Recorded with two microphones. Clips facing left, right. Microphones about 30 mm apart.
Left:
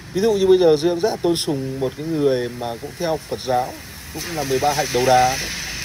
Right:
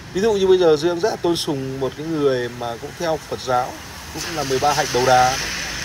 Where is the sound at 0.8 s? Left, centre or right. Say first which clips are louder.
Left 1 dB; centre.